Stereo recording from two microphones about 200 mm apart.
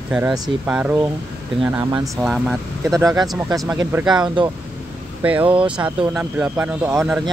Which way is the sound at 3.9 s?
5° right (ahead or behind).